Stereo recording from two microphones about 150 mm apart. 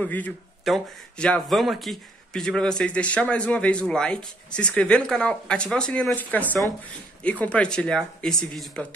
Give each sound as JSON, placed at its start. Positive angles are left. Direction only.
{"t": 0.0, "sound": "speech", "side_deg": 10}